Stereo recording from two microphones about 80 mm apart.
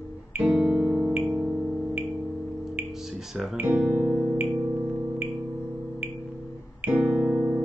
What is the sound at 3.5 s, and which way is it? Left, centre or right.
Music, centre.